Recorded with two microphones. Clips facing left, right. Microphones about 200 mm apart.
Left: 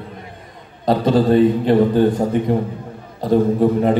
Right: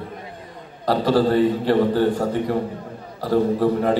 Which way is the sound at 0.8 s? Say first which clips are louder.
Left 3 dB; 20° left (ahead or behind).